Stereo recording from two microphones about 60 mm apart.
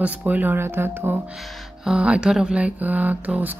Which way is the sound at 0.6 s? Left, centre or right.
Right.